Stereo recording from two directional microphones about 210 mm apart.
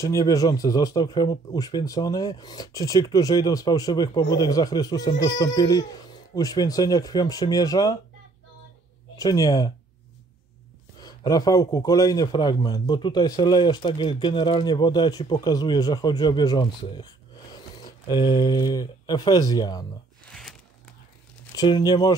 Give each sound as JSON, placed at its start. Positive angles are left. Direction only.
{"t": 0.0, "sound": "speech", "side_deg": 15}
{"t": 9.1, "sound": "speech", "side_deg": 15}
{"t": 11.0, "sound": "a man's voice", "side_deg": 15}
{"t": 20.2, "sound": "a sound", "side_deg": 5}
{"t": 21.5, "sound": "speech", "side_deg": 20}